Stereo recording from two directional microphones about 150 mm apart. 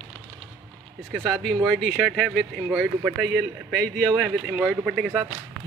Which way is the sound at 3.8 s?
5° left (ahead or behind).